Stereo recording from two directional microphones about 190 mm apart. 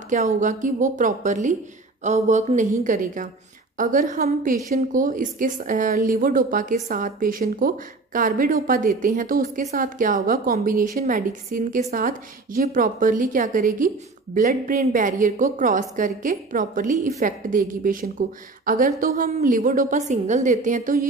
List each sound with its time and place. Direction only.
0.1 s a woman's voice: 40° right (ahead or behind)